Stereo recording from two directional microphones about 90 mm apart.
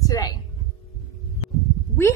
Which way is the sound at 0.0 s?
45° left (ahead or behind).